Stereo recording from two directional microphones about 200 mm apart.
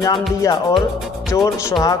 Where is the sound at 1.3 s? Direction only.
15° left (ahead or behind).